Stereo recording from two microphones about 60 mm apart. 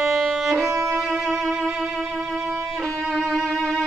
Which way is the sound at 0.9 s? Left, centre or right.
Centre.